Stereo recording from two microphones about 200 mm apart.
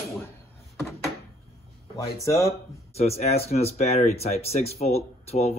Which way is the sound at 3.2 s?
30° left (ahead or behind).